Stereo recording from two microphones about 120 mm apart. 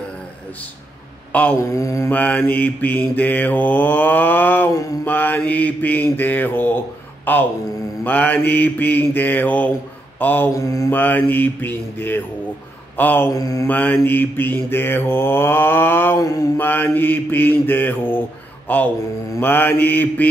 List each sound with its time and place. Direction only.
1.6 s mantra: 25° left (ahead or behind)
2.1 s mantra: 15° left (ahead or behind)
10.5 s mantra: 30° left (ahead or behind)
10.9 s mantra: 15° left (ahead or behind)
13.3 s mantra: 30° left (ahead or behind)
13.7 s mantra: 15° left (ahead or behind)
16.2 s mantra: 30° left (ahead or behind)
16.5 s mantra: 15° left (ahead or behind)